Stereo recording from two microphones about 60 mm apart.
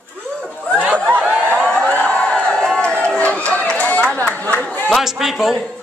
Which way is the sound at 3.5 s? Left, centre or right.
Left.